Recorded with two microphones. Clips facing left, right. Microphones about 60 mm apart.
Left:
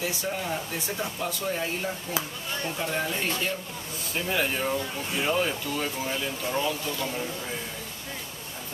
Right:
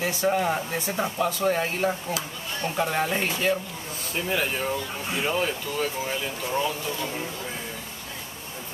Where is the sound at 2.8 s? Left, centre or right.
Right.